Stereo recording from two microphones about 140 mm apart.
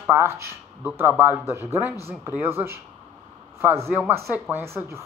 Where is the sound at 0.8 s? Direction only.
15° right (ahead or behind).